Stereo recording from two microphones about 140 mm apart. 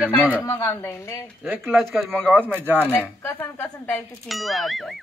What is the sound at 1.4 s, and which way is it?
Speech, 15° right (ahead or behind).